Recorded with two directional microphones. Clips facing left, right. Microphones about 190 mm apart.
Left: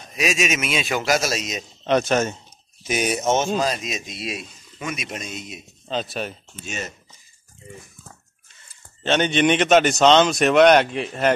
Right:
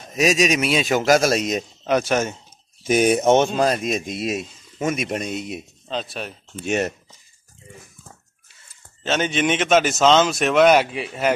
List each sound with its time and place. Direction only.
0.1 s speech: 40° right (ahead or behind)
1.9 s speech: 10° right (ahead or behind)
2.8 s speech: 50° right (ahead or behind)
5.9 s speech: centre (ahead or behind)
6.6 s speech: 65° right (ahead or behind)
9.0 s speech: centre (ahead or behind)